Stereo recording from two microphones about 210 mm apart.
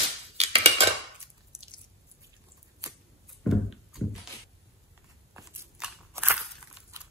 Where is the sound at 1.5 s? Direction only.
20° right (ahead or behind).